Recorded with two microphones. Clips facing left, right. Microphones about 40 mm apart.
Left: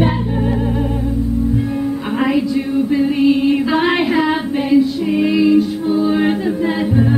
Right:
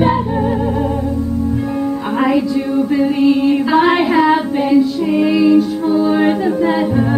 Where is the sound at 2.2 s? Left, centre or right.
Centre.